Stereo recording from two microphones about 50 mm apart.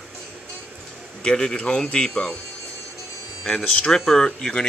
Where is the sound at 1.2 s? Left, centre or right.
Centre.